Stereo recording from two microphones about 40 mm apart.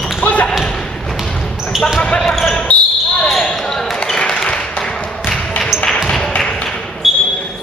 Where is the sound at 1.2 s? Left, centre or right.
Centre.